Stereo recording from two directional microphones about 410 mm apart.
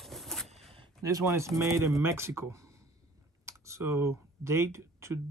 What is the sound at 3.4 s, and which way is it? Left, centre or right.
Computer keyboard, centre.